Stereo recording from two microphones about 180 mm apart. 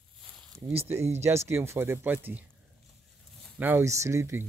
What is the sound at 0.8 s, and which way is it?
A man's voice, 15° right (ahead or behind).